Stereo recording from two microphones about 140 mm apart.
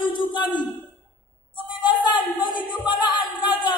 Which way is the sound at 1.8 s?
30° left (ahead or behind).